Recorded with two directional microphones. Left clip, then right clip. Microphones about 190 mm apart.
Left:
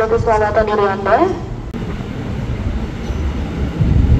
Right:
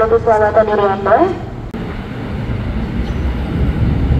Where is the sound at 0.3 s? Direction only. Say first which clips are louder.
Right 2 dB; 25° right (ahead or behind).